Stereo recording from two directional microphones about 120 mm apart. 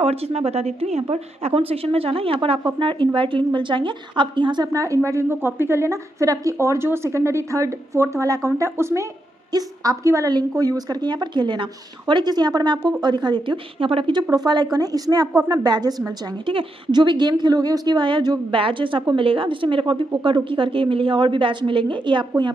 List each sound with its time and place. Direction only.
0.0 s a woman's voice: 60° right (ahead or behind); by 4.6 s 40° right (ahead or behind)
4.7 s a woman's voice: 25° right (ahead or behind)
16.4 s a woman's voice: 45° right (ahead or behind)